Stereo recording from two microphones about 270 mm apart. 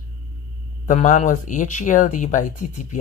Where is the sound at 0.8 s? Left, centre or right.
Left.